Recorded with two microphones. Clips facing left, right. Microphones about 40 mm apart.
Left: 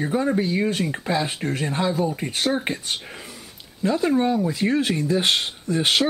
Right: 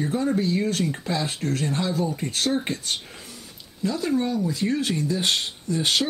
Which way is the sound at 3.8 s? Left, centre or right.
Left.